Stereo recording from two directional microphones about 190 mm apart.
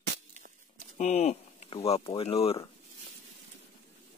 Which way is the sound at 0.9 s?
35° left (ahead or behind).